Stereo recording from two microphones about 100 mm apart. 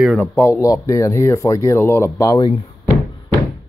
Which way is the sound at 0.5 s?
35° left (ahead or behind).